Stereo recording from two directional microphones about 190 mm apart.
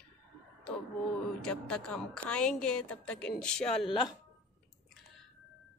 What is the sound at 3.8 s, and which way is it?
Speech, 25° left (ahead or behind).